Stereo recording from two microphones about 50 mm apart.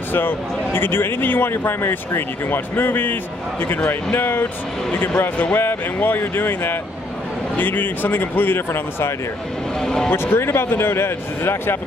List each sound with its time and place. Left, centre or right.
0.1 s a man's voice: left
9.8 s vehicle: centre
10.1 s a man's voice: left